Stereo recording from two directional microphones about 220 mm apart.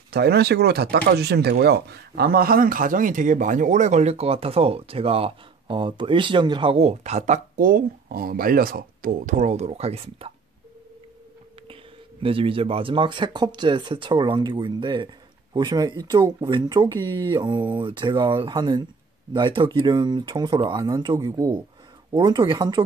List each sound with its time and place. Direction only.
0.1 s speech: 45° right (ahead or behind); by 10.3 s 25° right (ahead or behind)
11.6 s speech: 25° right (ahead or behind)